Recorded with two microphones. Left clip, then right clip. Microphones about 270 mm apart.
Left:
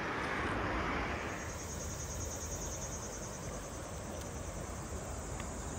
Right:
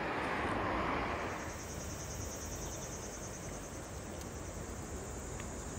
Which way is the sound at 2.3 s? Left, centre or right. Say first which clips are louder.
Left 1 dB; centre.